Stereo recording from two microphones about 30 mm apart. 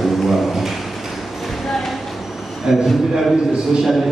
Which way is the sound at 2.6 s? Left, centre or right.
Centre.